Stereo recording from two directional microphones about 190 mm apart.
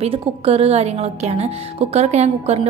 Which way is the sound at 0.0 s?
30° right (ahead or behind).